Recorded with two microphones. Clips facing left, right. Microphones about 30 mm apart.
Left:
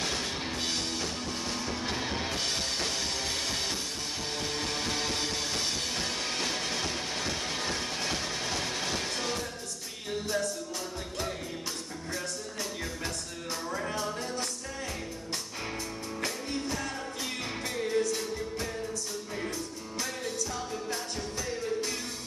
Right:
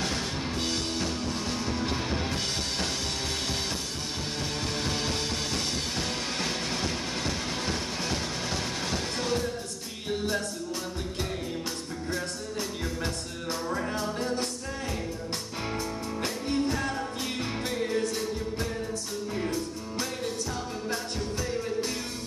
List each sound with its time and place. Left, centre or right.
0.8 s music: centre
6.4 s train: centre
7.2 s music: centre
13.9 s music: right
16.2 s music: right